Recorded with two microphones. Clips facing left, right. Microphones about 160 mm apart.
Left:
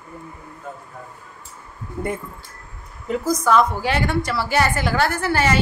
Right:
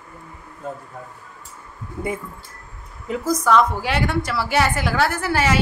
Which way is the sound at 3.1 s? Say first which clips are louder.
Even; centre (ahead or behind).